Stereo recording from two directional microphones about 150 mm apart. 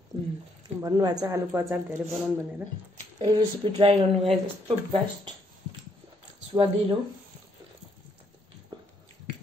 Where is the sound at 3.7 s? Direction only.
40° right (ahead or behind).